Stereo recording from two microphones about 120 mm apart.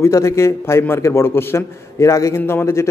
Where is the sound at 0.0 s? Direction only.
25° left (ahead or behind).